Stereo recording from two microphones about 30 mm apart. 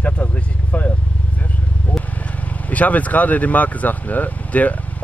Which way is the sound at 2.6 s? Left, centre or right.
Left.